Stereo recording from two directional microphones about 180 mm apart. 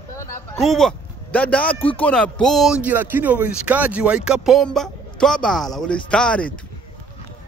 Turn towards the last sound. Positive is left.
turn(degrees=5)  # may be behind; listen again after turning